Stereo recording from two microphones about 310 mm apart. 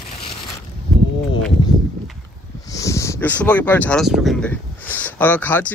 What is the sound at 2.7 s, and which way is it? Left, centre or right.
Speech, centre.